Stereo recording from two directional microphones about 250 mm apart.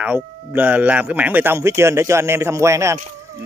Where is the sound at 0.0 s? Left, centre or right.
Centre.